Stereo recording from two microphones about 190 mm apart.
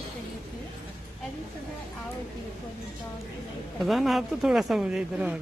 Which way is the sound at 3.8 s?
Centre (ahead or behind).